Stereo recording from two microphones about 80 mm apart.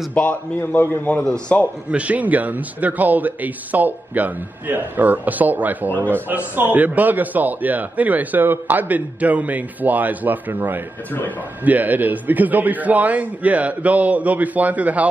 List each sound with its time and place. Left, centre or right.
0.1 s a man's voice: left
1.2 s a man's voice: centre
1.9 s a man's voice: centre